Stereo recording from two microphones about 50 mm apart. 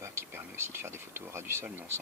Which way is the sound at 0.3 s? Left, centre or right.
Right.